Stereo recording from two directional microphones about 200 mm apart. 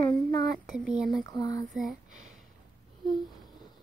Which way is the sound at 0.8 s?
Centre (ahead or behind).